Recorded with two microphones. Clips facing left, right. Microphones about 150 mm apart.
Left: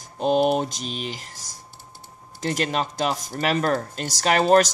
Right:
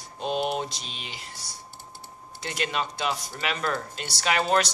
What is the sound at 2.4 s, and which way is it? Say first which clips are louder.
Speech: left 5 dB; 40° left (ahead or behind).